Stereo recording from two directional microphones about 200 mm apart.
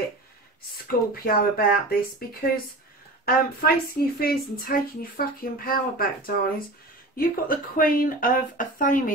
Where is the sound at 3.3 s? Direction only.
45° left (ahead or behind).